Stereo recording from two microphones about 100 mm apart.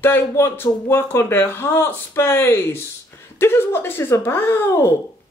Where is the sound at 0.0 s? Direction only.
25° left (ahead or behind).